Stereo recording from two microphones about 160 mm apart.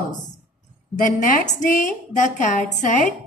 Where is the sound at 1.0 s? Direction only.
55° left (ahead or behind).